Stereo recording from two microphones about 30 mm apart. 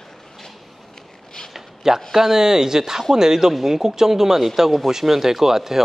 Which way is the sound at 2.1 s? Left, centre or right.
Centre.